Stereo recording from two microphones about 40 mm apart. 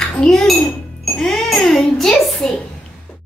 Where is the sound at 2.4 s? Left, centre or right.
Centre.